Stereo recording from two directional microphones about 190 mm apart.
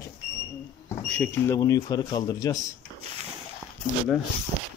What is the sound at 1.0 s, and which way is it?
A man's voice, 5° left (ahead or behind).